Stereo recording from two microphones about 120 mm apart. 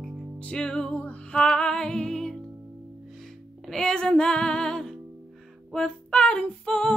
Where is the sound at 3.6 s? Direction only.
5° left (ahead or behind).